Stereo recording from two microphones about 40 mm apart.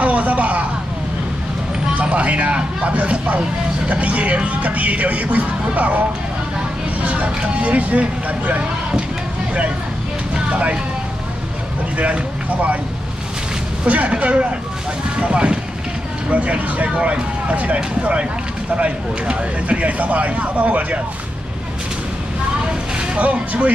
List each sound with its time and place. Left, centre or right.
0.0 s a sound: right
2.0 s vehicle: right
3.9 s speech: right
10.5 s speech: right
12.0 s speech: right
13.8 s speech: right
18.8 s speech: right
23.1 s speech: right